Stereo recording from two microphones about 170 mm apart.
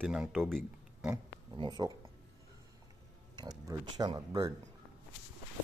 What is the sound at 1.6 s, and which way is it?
Speech, 25° right (ahead or behind).